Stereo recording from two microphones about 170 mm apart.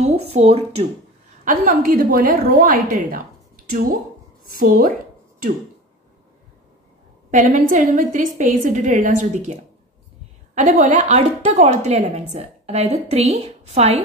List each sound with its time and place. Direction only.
0.0 s speech: 35° right (ahead or behind)
1.4 s a woman's voice: 50° right (ahead or behind)
7.2 s a woman's voice: 45° right (ahead or behind)
10.5 s speech: 45° right (ahead or behind)